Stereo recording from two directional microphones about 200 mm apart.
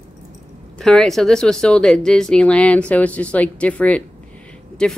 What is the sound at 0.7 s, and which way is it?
Speech, centre (ahead or behind).